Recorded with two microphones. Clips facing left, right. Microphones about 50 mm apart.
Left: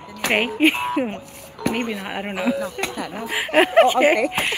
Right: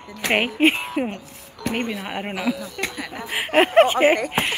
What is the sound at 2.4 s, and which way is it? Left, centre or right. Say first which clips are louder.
Speech: left 5 dB; left.